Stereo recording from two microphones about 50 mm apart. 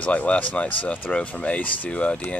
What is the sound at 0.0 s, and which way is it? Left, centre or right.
Speech, left.